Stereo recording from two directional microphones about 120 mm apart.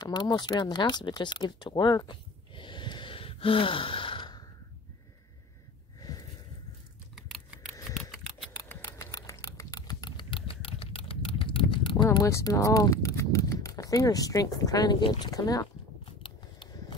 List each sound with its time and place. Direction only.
0.0 s speech: 35° left (ahead or behind)
5.9 s a sound: 30° left (ahead or behind)
7.2 s scissors: centre (ahead or behind)
8.6 s a sound: 20° left (ahead or behind); by 12.1 s 40° left (ahead or behind)
12.2 s speech: 25° left (ahead or behind)
16.1 s biting: 45° left (ahead or behind)